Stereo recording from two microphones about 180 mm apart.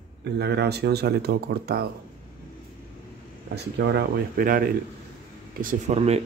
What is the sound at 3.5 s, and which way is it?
Speech, 70° right (ahead or behind).